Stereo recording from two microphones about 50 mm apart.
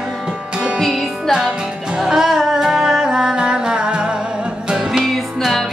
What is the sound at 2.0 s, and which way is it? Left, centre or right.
Music, centre.